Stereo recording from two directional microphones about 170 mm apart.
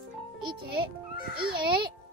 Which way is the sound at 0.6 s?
65° right (ahead or behind).